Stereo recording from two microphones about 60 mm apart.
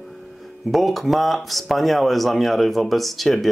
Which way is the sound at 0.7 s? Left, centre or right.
Centre.